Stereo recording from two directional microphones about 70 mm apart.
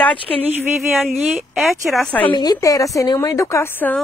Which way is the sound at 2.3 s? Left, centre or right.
Left.